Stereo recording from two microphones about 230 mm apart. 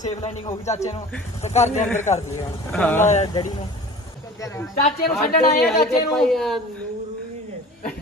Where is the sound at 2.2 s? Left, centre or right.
Centre.